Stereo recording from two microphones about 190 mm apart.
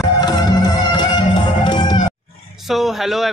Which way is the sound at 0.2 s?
20° left (ahead or behind).